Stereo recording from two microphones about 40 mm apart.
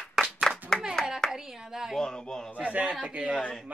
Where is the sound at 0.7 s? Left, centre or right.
Centre.